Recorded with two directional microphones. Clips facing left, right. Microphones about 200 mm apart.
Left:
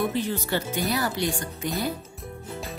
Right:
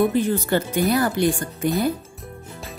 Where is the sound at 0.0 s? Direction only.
50° right (ahead or behind).